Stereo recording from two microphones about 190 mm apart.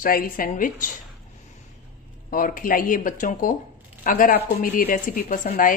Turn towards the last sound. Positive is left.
turn(degrees=45)  # may be behind; listen again after turning